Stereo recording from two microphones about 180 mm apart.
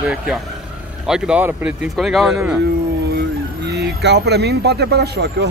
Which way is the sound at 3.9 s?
65° right (ahead or behind).